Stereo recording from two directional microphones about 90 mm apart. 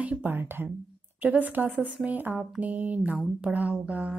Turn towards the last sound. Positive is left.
turn(degrees=-15)  # may be behind; listen again after turning